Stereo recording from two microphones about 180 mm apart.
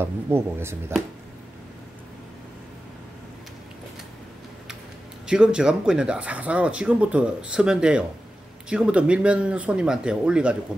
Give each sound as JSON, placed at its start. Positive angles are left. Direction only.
{"t": 0.0, "sound": "speech", "side_deg": -15}
{"t": 5.2, "sound": "speech", "side_deg": -5}